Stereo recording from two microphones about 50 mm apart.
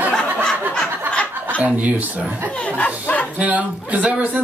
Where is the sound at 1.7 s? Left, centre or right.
Right.